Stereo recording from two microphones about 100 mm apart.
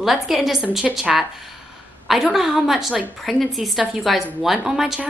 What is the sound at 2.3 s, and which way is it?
A woman's voice, centre (ahead or behind).